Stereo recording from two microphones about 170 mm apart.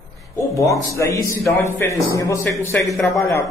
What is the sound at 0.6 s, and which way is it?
A man's voice, 15° left (ahead or behind).